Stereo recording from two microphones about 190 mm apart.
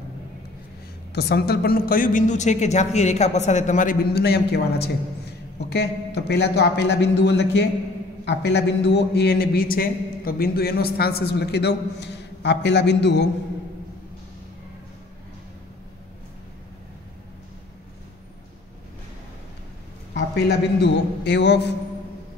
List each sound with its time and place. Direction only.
1.1 s a man's voice: 55° left (ahead or behind)
20.2 s a man's voice: 65° left (ahead or behind)